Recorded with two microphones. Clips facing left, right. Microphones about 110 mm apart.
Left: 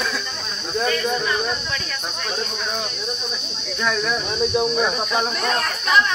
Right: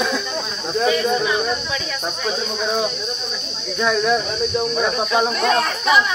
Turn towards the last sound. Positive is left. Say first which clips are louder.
# right 3 dB
turn(degrees=-5)  # may be behind; listen again after turning